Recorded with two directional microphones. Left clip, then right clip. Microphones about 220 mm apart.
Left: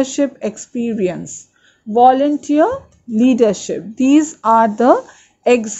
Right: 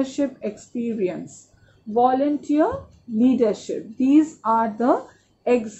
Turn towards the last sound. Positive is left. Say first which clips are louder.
# left 7 dB
turn(degrees=50)  # may be behind; listen again after turning